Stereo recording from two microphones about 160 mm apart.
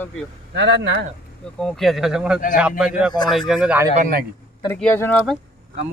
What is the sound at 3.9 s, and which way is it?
Speech, 60° right (ahead or behind).